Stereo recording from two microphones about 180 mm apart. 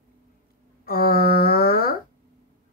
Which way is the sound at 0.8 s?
55° left (ahead or behind).